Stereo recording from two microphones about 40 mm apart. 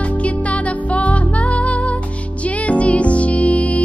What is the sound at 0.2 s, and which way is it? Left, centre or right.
Music, left.